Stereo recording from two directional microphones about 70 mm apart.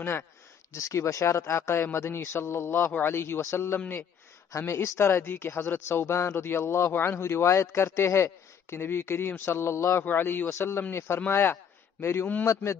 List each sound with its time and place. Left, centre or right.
0.0 s speech: left
10.0 s speech: left